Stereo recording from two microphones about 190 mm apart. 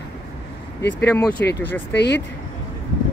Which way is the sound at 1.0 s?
10° left (ahead or behind).